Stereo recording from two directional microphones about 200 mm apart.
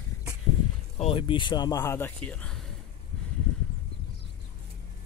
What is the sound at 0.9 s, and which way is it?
Speech, 25° left (ahead or behind).